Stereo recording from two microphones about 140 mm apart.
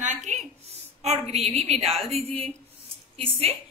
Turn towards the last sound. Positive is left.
turn(degrees=-45)  # may be behind; listen again after turning